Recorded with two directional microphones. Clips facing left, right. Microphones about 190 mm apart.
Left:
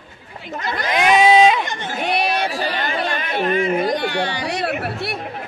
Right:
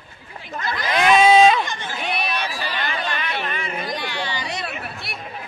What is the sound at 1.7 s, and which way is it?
Chatter, 55° left (ahead or behind).